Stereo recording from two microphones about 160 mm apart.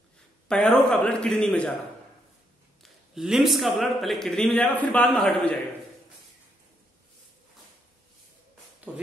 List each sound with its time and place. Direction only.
0.5 s a man's voice: 5° left (ahead or behind)
2.8 s a man's voice: centre (ahead or behind)
8.9 s speech: 10° right (ahead or behind)